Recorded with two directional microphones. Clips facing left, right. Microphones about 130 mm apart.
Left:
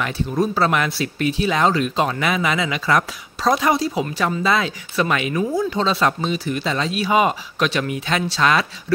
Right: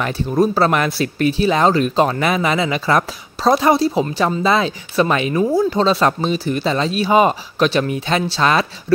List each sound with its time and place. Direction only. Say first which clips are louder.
0.0 s speech: right 4 dB; 40° right (ahead or behind)